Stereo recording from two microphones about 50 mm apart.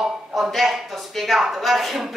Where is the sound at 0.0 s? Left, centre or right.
Centre.